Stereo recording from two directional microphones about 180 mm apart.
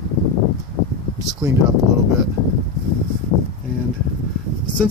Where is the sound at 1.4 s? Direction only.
20° right (ahead or behind).